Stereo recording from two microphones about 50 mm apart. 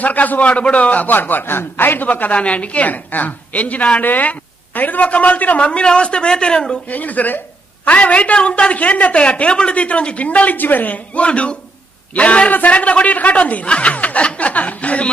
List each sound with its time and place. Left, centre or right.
0.0 s a man's voice: left
2.0 s a woman's voice: left
6.9 s a man's voice: left